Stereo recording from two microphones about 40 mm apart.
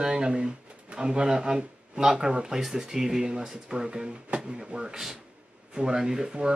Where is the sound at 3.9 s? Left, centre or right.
Right.